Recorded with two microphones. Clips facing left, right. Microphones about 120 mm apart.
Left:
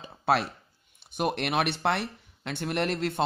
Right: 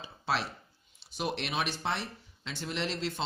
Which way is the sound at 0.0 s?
55° left (ahead or behind).